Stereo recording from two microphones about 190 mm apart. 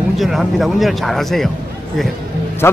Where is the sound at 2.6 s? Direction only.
15° left (ahead or behind).